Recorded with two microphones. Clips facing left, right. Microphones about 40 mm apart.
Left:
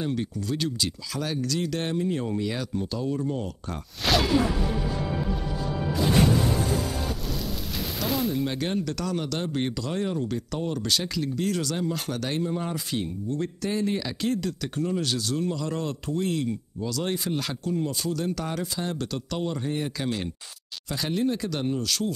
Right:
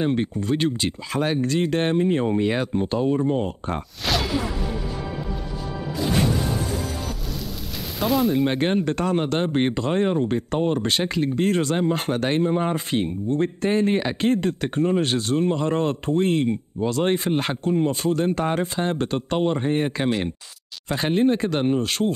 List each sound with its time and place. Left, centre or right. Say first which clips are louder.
0.0 s speech: right 6 dB; right
4.0 s a sound: left 3 dB; centre
8.0 s speech: right 7 dB; right